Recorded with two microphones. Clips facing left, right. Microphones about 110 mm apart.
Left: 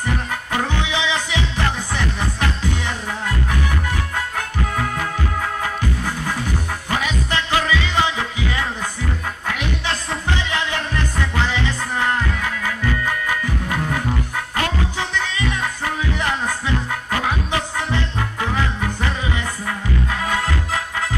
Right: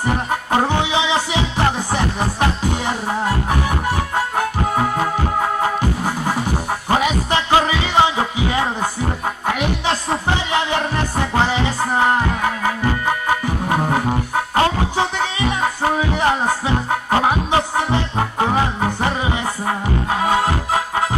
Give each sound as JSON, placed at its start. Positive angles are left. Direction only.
{"t": 0.0, "sound": "music", "side_deg": -30}